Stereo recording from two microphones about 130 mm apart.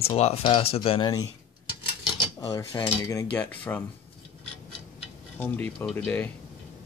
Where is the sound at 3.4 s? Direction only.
10° left (ahead or behind).